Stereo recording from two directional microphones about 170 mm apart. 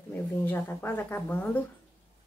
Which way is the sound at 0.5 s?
10° left (ahead or behind).